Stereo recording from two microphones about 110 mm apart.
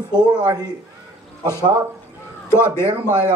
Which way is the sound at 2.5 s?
25° left (ahead or behind).